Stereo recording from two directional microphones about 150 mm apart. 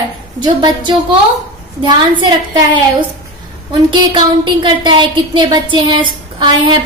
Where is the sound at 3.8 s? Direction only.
30° right (ahead or behind).